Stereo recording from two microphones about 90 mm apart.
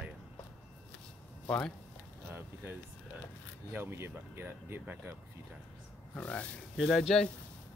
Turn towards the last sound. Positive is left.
turn(degrees=5)  # may be behind; listen again after turning